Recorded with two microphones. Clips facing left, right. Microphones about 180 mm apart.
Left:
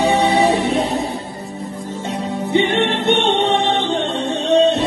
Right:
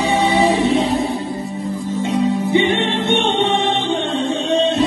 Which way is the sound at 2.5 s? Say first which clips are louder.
Even; 65° left (ahead or behind).